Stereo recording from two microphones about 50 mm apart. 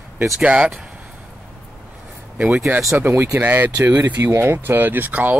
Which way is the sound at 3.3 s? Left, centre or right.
Right.